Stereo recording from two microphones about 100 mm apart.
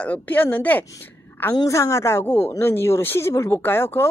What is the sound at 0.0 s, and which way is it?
Speech, 15° left (ahead or behind).